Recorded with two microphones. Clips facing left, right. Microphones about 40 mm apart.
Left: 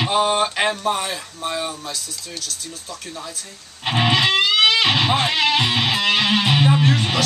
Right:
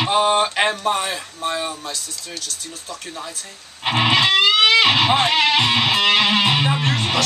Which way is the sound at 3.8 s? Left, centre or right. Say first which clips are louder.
Right 1 dB; centre.